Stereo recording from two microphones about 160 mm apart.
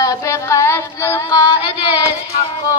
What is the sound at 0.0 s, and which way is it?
Child singing, 20° left (ahead or behind).